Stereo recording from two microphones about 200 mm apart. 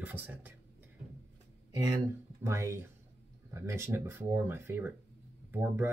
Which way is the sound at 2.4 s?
15° right (ahead or behind).